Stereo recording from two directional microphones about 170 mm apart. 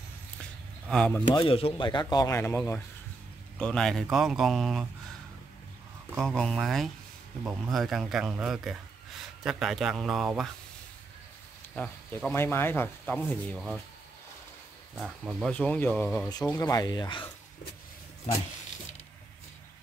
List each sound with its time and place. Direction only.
0.4 s a sound: 5° left (ahead or behind)
1.3 s speech: 30° left (ahead or behind); by 4.8 s centre (ahead or behind)
6.1 s speech: 5° left (ahead or behind)
11.7 s speech: 5° left (ahead or behind)
15.0 s speech: 5° right (ahead or behind)
15.5 s speech: 10° left (ahead or behind); by 17.2 s 25° left (ahead or behind)